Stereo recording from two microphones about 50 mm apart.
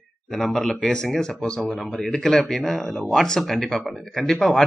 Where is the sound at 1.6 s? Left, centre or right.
Centre.